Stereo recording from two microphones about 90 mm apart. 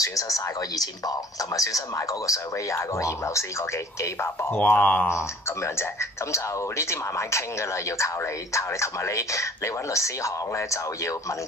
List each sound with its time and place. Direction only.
0.0 s speech: 40° left (ahead or behind); by 5.1 s 15° left (ahead or behind)
5.1 s speech: 30° left (ahead or behind)